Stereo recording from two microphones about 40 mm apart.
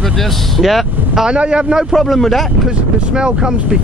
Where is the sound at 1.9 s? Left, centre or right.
Centre.